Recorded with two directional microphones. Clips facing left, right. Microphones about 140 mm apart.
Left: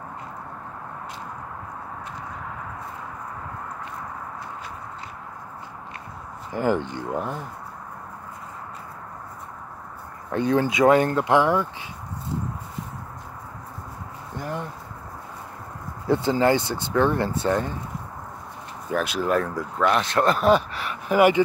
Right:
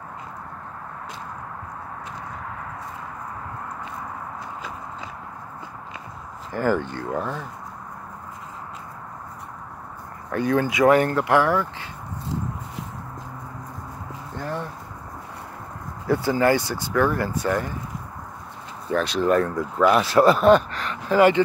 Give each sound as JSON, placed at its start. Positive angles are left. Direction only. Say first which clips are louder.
{"t": 6.5, "sound": "speech", "louder": "even", "side_deg": 20}
{"t": 10.3, "sound": "speech", "louder": "even", "side_deg": 20}
{"t": 14.3, "sound": "a sound", "louder": "right 1 dB", "side_deg": 15}
{"t": 16.1, "sound": "speech", "louder": "even", "side_deg": 20}
{"t": 18.9, "sound": "speech", "louder": "right 3 dB", "side_deg": 10}